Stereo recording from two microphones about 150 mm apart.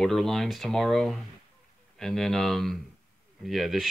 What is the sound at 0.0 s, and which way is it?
Speech, centre (ahead or behind).